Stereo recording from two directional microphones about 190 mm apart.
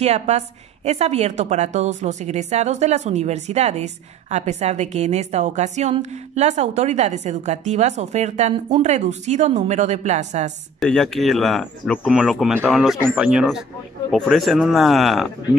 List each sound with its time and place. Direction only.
0.0 s a woman's voice: 35° right (ahead or behind)
10.8 s speech: centre (ahead or behind)